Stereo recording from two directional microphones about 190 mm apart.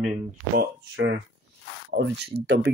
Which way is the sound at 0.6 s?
60° right (ahead or behind).